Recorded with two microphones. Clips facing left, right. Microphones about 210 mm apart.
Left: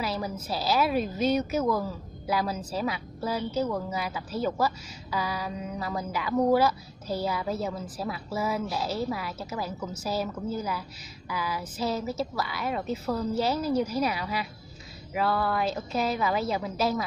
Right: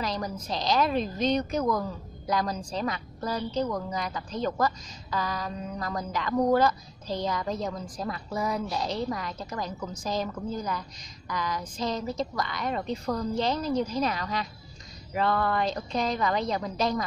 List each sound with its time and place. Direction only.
0.0 s a woman's voice: 5° left (ahead or behind)